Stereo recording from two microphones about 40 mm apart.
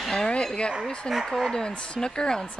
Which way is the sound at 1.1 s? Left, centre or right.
Centre.